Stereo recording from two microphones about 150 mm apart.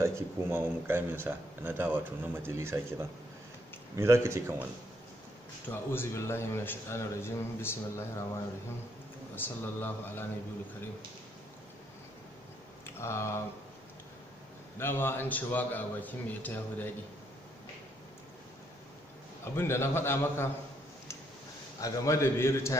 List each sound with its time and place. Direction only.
0.0 s speech: 15° right (ahead or behind)
5.7 s a man's voice: 15° left (ahead or behind)
9.3 s a man's voice: 15° left (ahead or behind)
12.8 s speech: 15° left (ahead or behind)
14.8 s a man's voice: 15° left (ahead or behind)
19.4 s a man's voice: 15° left (ahead or behind)
21.7 s a man's voice: 20° left (ahead or behind)